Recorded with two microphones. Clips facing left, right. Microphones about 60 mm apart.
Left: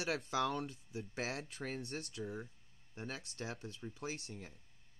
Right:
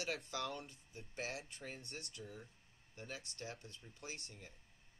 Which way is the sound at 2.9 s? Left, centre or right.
Left.